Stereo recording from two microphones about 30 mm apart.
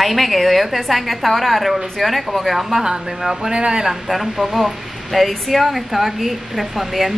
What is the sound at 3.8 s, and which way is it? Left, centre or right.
A woman's voice, centre.